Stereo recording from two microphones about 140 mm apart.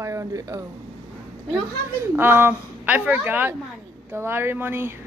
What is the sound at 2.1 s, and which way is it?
A woman's voice, 15° right (ahead or behind).